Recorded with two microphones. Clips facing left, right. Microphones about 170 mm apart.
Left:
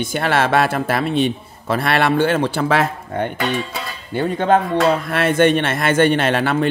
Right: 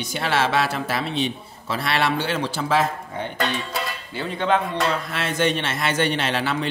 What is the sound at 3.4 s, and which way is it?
Music, centre (ahead or behind).